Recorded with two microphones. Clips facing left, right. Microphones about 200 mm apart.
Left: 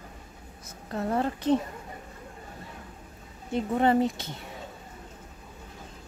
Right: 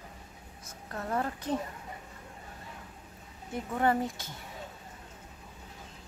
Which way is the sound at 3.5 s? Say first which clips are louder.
Left 5 dB; 25° left (ahead or behind).